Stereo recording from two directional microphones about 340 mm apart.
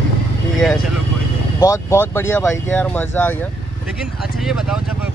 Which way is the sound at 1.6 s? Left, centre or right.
Centre.